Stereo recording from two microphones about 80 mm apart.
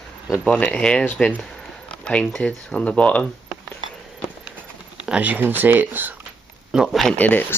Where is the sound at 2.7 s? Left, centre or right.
Centre.